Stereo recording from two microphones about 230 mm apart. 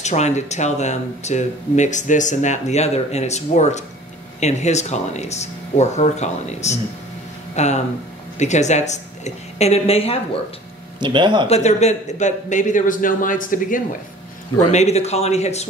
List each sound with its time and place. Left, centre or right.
0.0 s speech: left
11.0 s speech: centre
11.4 s a man's voice: left